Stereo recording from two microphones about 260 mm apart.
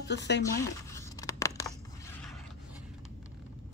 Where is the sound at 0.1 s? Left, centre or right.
Left.